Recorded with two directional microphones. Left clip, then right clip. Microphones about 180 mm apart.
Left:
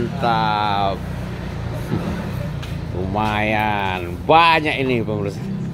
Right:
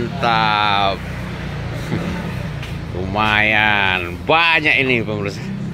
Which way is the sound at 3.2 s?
5° left (ahead or behind).